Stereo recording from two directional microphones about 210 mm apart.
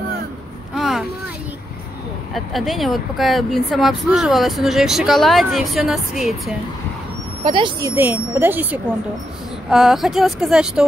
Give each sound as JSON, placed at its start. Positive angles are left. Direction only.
{"t": 0.7, "sound": "a sound", "side_deg": 0}
{"t": 2.3, "sound": "speech", "side_deg": 0}
{"t": 7.4, "sound": "speech", "side_deg": -25}
{"t": 7.9, "sound": "speech", "side_deg": -10}